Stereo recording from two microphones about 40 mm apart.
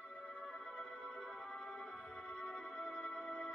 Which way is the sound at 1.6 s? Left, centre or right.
Centre.